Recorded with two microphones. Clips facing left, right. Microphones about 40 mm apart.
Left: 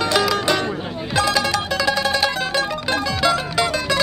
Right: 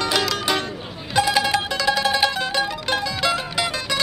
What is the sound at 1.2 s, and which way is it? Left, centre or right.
Music, centre.